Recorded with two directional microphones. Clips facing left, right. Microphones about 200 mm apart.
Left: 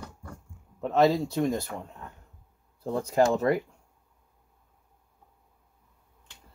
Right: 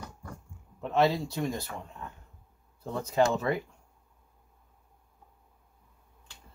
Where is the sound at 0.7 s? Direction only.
45° left (ahead or behind).